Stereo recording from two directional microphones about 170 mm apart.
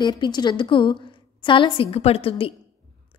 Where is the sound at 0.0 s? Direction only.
25° left (ahead or behind).